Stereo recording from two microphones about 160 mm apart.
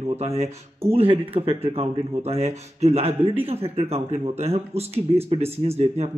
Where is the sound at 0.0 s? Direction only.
40° right (ahead or behind).